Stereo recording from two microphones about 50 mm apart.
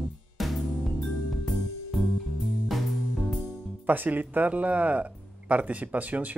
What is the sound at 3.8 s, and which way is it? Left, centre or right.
Speech, right.